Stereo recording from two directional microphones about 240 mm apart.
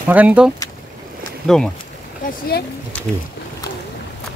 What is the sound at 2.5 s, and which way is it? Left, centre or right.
Speech, left.